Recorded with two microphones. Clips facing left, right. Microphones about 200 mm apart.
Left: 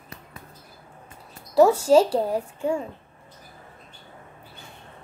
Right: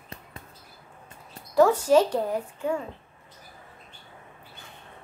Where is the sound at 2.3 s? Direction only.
30° left (ahead or behind).